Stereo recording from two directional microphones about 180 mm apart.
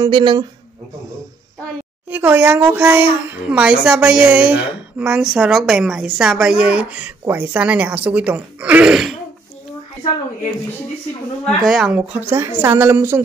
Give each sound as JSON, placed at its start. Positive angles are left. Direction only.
{"t": 0.0, "sound": "speech", "side_deg": -25}
{"t": 2.0, "sound": "a child's voice", "side_deg": -10}
{"t": 11.4, "sound": "speech", "side_deg": 0}
{"t": 12.0, "sound": "a child's voice", "side_deg": -10}